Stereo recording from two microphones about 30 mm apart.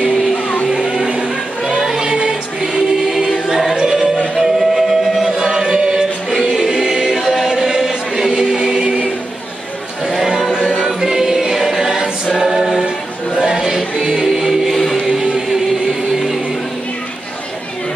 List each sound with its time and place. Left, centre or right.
0.7 s music: right
2.6 s choir: centre
3.7 s music: right
4.4 s music: centre
5.3 s chant: right
6.5 s choir: right
7.2 s music: centre
8.8 s a capella: right
11.0 s choir: centre
13.4 s a sound: centre
14.1 s music: centre